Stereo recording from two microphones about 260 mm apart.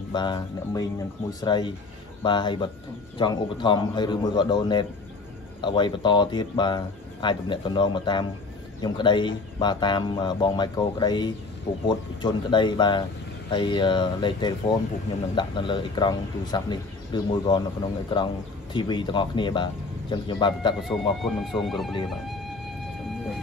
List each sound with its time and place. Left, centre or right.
0.1 s speech: centre
20.8 s speech: centre